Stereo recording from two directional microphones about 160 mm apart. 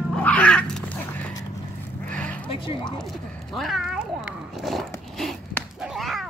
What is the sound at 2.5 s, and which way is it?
Speech, 30° left (ahead or behind).